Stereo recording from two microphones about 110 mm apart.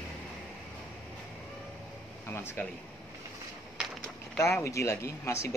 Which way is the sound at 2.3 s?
20° left (ahead or behind).